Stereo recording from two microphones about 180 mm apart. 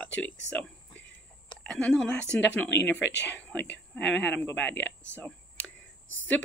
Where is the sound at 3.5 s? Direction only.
75° left (ahead or behind).